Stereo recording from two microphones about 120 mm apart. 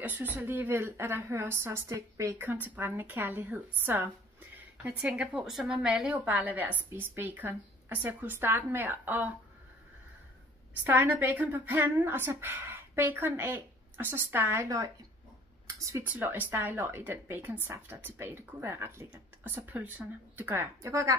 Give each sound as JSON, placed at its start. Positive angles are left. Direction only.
{"t": 0.0, "sound": "a woman's voice", "side_deg": -15}
{"t": 10.8, "sound": "a woman's voice", "side_deg": -15}
{"t": 16.1, "sound": "a woman's voice", "side_deg": -15}